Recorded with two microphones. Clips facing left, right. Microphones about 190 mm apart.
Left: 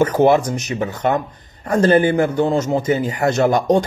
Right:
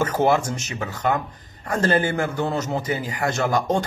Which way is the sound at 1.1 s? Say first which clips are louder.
Left 5 dB; 40° left (ahead or behind).